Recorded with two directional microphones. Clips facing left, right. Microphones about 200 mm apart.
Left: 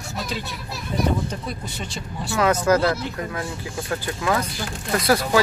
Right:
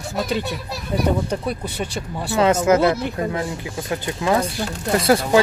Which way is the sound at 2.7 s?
25° right (ahead or behind).